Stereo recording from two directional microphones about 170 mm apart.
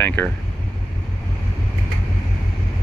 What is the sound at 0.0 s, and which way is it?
Speech, 10° left (ahead or behind).